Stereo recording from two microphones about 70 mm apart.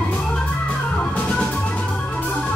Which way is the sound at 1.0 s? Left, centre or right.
Left.